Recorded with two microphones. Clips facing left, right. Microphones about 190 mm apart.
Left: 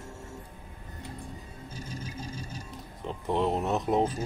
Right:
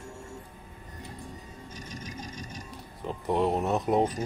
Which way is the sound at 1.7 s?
30° left (ahead or behind).